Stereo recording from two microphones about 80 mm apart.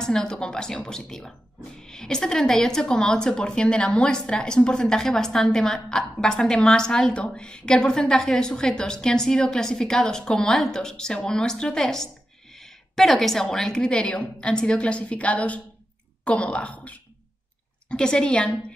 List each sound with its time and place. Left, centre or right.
0.0 s speech: centre